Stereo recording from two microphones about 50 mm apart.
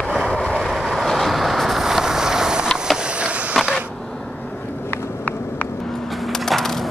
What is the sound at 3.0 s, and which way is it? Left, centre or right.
Skateboard, right.